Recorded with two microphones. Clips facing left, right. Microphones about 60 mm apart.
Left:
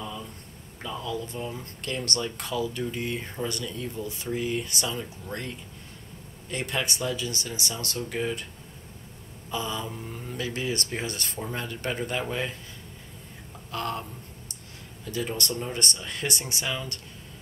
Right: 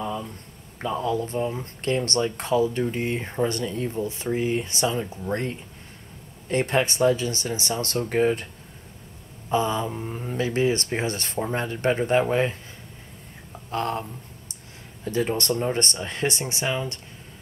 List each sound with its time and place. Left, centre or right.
0.0 s a sound: right
0.7 s speech: right
9.5 s speech: right
15.0 s speech: right